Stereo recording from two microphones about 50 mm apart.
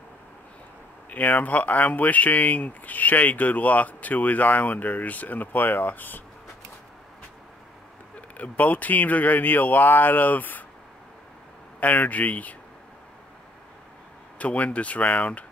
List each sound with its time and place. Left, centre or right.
1.1 s speech: left
8.4 s speech: left
11.8 s speech: left
14.4 s speech: left